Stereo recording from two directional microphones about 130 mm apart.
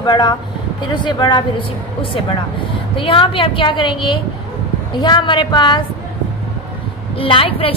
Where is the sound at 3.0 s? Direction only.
40° left (ahead or behind).